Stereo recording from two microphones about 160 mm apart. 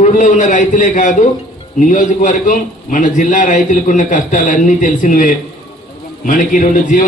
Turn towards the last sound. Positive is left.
turn(degrees=55)  # may be behind; listen again after turning